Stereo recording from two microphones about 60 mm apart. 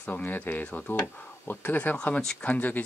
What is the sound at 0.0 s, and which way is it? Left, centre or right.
Speech, left.